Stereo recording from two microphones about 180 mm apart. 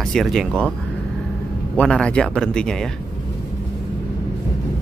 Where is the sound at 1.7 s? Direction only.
5° left (ahead or behind).